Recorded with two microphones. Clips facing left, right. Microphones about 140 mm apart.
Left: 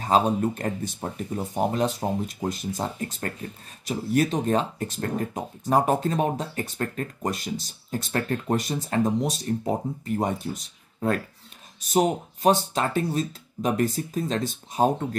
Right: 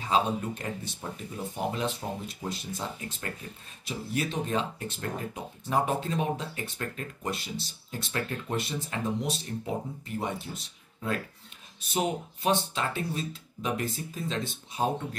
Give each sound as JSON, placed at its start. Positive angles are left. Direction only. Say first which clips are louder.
{"t": 0.0, "sound": "speech", "louder": "left 6 dB", "side_deg": 45}